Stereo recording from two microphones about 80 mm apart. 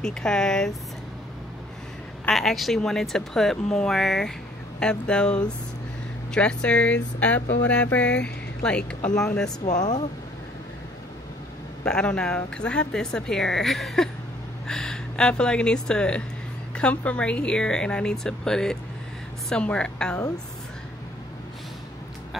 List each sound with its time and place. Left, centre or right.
0.0 s a woman's voice: centre
2.3 s a woman's voice: centre
9.8 s speech: left
11.8 s a woman's voice: centre